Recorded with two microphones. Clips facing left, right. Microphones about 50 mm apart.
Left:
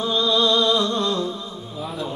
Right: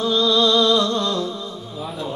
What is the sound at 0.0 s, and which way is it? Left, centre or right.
Music, left.